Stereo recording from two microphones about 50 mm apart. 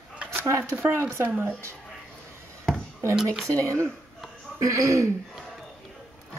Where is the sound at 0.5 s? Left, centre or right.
Right.